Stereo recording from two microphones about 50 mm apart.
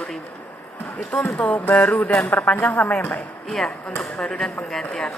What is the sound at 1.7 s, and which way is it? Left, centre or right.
Speech, centre.